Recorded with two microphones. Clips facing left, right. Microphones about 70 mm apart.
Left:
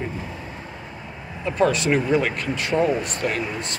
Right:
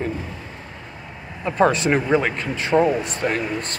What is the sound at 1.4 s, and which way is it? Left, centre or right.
Speech, right.